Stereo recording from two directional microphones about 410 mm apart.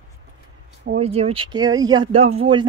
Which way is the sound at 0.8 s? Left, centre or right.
Centre.